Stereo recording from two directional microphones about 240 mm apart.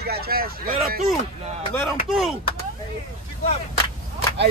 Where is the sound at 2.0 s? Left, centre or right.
Centre.